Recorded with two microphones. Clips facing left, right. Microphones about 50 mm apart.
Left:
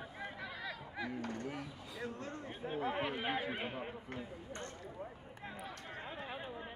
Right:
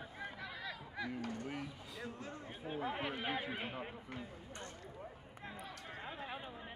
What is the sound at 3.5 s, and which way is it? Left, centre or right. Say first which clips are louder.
Horse: left 2 dB; centre.